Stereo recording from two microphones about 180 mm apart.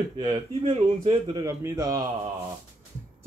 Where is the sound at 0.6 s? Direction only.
35° right (ahead or behind).